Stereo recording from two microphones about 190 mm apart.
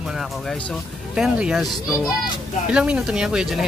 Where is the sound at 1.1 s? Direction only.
5° right (ahead or behind).